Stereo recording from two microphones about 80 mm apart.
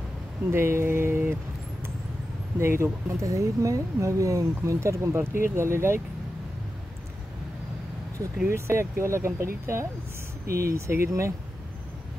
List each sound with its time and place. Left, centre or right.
0.5 s speech: right
8.5 s speech: right